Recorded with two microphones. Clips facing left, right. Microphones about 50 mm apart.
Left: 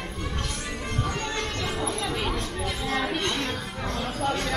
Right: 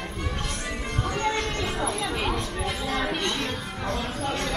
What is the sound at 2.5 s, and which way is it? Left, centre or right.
Chatter, centre.